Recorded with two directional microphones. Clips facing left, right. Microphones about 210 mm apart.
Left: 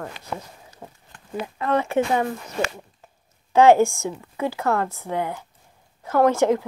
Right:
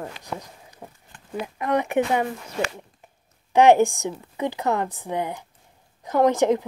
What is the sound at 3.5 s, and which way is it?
Speech, 15° right (ahead or behind).